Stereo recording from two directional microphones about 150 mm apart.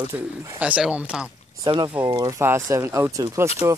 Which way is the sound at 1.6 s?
30° right (ahead or behind).